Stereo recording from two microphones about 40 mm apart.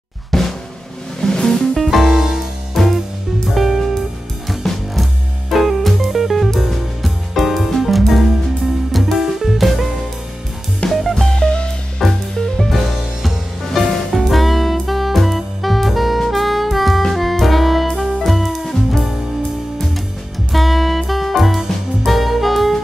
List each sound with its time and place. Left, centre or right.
0.3 s drum: centre
1.2 s music: centre
1.8 s music: centre
2.8 s music: centre
10.9 s music: centre
11.3 s music: left
12.0 s music: centre
14.2 s saxophone: centre
17.1 s music: centre
20.5 s music: centre